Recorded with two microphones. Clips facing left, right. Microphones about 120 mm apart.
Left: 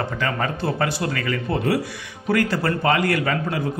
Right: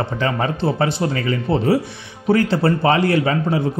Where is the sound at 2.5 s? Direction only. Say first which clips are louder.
Right 4 dB; 30° right (ahead or behind).